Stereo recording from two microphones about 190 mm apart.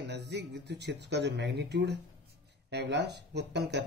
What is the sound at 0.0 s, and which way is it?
Speech, 65° right (ahead or behind).